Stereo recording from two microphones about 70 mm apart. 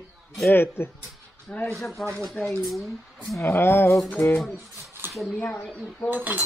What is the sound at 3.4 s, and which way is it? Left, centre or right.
Speech, left.